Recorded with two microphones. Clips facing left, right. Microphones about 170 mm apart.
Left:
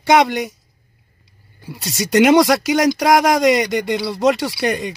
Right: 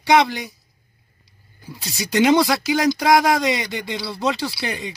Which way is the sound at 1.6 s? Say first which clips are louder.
Left 5 dB; 85° left.